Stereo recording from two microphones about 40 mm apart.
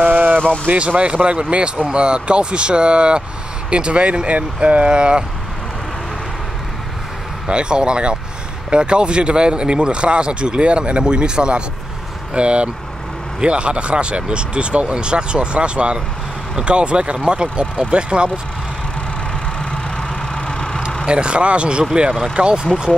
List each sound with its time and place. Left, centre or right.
0.0 s a sound: right
0.5 s speech: right
7.4 s speech: right
19.6 s vehicle: centre
21.0 s speech: right